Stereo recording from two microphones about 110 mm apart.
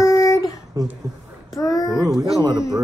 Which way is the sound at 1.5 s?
30° left (ahead or behind).